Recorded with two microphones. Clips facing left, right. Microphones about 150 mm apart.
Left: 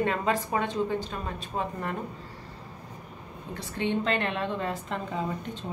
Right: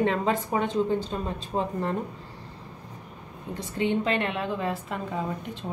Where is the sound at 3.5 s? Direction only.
10° right (ahead or behind).